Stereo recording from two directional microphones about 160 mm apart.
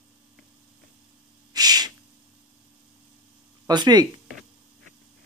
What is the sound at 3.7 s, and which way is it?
Speech, 25° right (ahead or behind).